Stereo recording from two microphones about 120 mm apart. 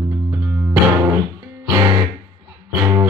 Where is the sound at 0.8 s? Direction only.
25° right (ahead or behind).